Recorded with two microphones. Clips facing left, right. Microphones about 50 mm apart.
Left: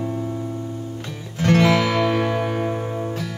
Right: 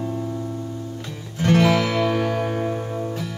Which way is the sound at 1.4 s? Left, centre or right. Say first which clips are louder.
Left 1 dB; left.